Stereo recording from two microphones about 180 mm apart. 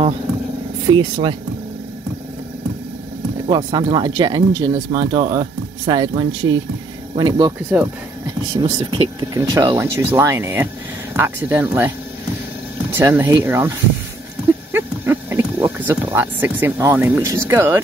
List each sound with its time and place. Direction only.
0.8 s speech: 25° right (ahead or behind)
3.4 s speech: 25° right (ahead or behind)
8.5 s speech: 30° right (ahead or behind); by 11.9 s 10° right (ahead or behind)
12.9 s speech: 15° right (ahead or behind)
14.7 s a sound: 15° right (ahead or behind)
17.5 s speech: 15° right (ahead or behind)